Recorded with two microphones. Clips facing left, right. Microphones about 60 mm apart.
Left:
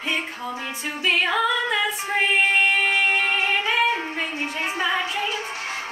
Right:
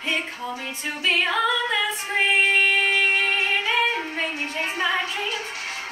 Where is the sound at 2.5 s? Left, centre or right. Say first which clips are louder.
Even; centre.